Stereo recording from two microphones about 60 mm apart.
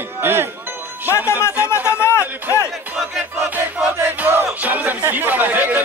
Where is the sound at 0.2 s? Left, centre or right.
Right.